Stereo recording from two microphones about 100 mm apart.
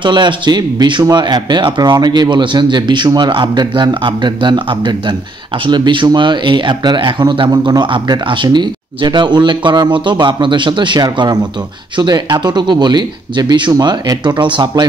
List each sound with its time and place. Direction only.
0.0 s speech: 50° right (ahead or behind)